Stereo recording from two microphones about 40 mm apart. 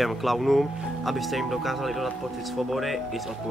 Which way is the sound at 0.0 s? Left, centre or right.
Centre.